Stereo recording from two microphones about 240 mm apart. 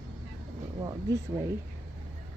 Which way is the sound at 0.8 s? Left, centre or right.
Centre.